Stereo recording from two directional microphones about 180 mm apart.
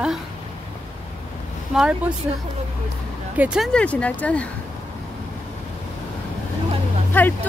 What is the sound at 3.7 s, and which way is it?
Speech, 5° left (ahead or behind).